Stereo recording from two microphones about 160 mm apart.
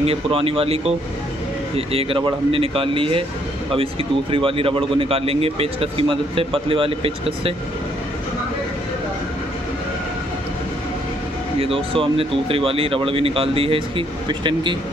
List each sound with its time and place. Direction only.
0.0 s speech: 35° right (ahead or behind)
11.6 s speech: 35° right (ahead or behind)